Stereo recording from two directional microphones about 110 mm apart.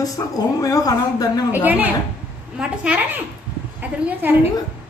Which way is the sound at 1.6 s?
15° right (ahead or behind).